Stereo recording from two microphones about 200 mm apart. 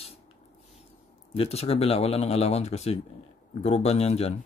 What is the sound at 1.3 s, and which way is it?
Speech, 30° left (ahead or behind).